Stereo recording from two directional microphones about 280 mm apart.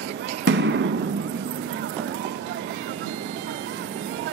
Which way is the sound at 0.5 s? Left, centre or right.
Right.